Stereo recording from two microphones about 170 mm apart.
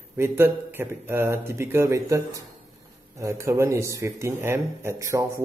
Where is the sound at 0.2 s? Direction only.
15° right (ahead or behind).